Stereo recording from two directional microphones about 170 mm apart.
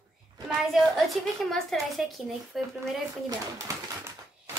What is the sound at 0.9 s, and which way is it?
Speech, centre (ahead or behind).